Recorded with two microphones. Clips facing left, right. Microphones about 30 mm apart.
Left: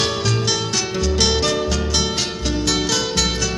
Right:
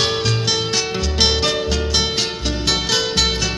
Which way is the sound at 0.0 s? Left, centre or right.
Centre.